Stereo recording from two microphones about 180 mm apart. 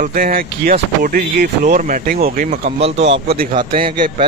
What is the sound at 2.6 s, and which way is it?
Speech, 35° right (ahead or behind).